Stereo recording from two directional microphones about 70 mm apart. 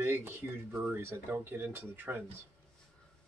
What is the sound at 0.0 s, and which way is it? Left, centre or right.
Speech, right.